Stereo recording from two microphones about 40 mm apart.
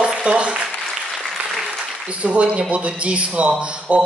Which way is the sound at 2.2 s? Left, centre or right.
Right.